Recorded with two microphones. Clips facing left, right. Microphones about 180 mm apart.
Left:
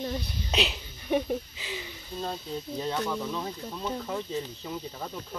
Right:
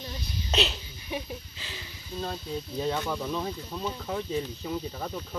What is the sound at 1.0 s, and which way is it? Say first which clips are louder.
Speech: left 9 dB; 50° left (ahead or behind).